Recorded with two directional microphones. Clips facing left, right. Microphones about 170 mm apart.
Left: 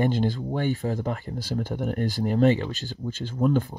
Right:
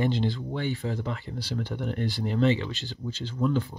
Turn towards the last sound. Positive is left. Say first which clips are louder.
# left 3 dB
turn(degrees=45)  # may be behind; listen again after turning